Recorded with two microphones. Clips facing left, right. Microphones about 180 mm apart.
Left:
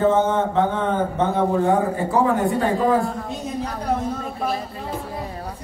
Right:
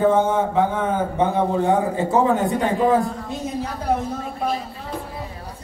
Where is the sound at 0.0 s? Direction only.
10° right (ahead or behind).